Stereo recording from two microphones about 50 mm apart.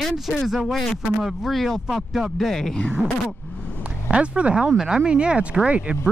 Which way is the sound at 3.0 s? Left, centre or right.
Right.